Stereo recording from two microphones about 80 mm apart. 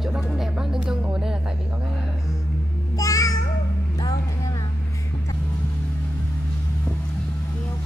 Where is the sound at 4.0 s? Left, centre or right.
Left.